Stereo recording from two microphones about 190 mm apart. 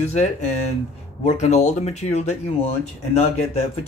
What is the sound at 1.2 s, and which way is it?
Speech, 35° left (ahead or behind).